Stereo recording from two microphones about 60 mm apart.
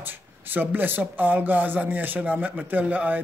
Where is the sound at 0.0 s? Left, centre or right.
Right.